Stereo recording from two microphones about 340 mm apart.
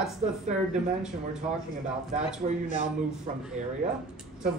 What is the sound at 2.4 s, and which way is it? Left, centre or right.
Speech, centre.